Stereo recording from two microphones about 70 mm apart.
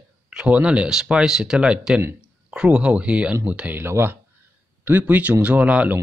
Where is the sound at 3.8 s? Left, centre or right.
Right.